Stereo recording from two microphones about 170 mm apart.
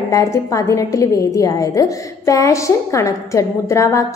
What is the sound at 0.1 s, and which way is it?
A woman's voice, 20° left (ahead or behind).